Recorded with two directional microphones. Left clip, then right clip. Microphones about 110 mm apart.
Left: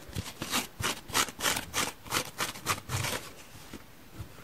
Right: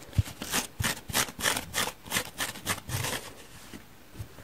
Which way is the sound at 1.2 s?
Centre (ahead or behind).